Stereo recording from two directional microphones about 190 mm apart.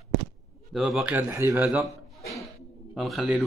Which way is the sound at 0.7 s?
5° right (ahead or behind).